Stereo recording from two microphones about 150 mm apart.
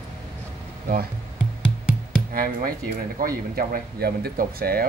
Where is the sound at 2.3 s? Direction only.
75° right (ahead or behind).